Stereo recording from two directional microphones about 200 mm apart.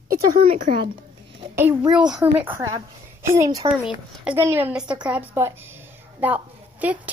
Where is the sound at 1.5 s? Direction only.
10° right (ahead or behind).